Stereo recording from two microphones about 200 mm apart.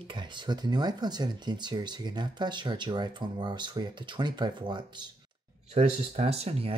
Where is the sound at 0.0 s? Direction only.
25° right (ahead or behind).